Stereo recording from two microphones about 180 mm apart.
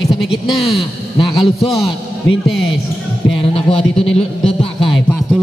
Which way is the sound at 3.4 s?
30° left (ahead or behind).